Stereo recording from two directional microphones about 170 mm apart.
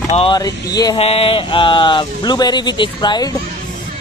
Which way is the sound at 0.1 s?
30° left (ahead or behind).